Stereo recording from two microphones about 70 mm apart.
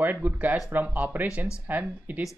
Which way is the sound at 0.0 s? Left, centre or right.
Right.